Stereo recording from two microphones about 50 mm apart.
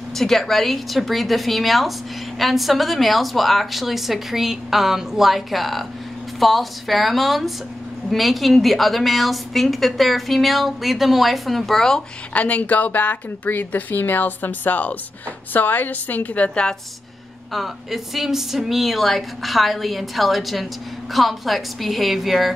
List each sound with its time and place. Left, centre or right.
0.1 s a woman's voice: centre
12.4 s speech: left
17.5 s a woman's voice: centre